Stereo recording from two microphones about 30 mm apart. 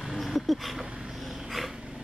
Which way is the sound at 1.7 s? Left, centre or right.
Right.